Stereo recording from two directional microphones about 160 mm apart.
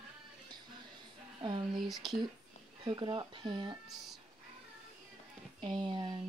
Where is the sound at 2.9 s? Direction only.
30° right (ahead or behind).